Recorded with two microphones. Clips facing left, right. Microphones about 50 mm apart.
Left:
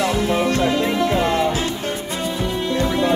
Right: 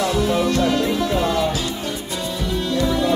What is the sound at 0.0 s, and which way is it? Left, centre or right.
Music, left.